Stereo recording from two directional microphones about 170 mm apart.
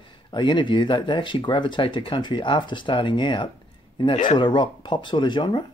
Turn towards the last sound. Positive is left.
turn(degrees=30)  # may be behind; listen again after turning